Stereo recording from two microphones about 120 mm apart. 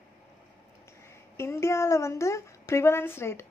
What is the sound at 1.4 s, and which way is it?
Speech, 25° left (ahead or behind).